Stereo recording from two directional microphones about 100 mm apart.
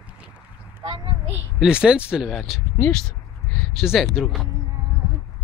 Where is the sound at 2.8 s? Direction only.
5° left (ahead or behind).